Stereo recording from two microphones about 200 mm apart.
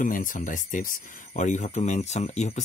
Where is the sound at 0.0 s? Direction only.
40° left (ahead or behind).